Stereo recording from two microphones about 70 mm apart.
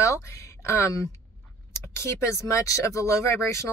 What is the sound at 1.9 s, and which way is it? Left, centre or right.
Speech, left.